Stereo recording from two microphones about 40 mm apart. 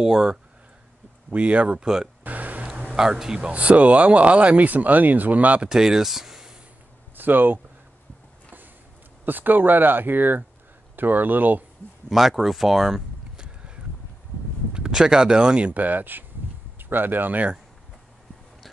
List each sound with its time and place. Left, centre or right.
0.0 s speech: centre
1.3 s speech: right
1.8 s speech: centre
2.2 s a sound: right
2.7 s speech: centre
3.4 s speech: right
5.7 s speech: centre
7.2 s speech: right
9.2 s speech: right
12.1 s speech: centre
14.7 s speech: centre
15.7 s speech: right